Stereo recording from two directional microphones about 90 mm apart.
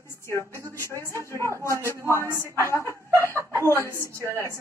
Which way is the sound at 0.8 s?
30° left (ahead or behind).